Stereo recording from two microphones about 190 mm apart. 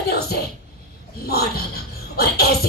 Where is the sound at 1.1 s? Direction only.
55° left (ahead or behind).